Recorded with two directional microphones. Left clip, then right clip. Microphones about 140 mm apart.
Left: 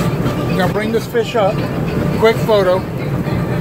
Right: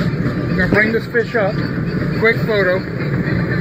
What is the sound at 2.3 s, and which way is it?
Speech, 20° left (ahead or behind).